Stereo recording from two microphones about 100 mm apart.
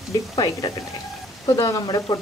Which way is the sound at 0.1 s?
35° left (ahead or behind).